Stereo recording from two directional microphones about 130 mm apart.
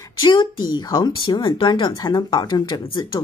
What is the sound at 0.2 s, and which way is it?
A woman's voice, 35° left (ahead or behind).